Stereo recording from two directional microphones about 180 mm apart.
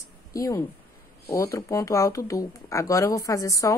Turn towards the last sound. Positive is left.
turn(degrees=20)  # may be behind; listen again after turning